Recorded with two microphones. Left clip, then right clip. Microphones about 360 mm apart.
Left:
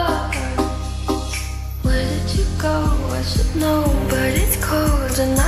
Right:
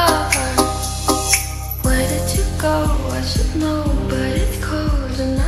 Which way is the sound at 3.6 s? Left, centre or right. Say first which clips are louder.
Left 4 dB; centre.